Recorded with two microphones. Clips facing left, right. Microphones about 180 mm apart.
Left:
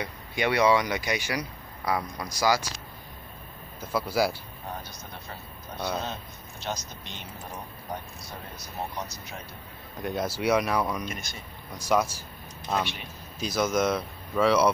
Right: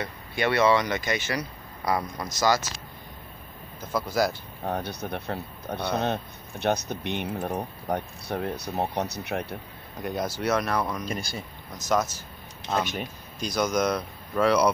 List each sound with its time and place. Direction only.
0.0 s speech: 15° left (ahead or behind)
3.8 s speech: 5° left (ahead or behind)
4.6 s speech: 65° right (ahead or behind)
10.0 s speech: 5° left (ahead or behind)
11.1 s speech: 30° right (ahead or behind)
11.7 s speech: 10° left (ahead or behind)